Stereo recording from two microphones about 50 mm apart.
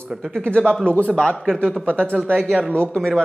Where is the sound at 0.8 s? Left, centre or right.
Left.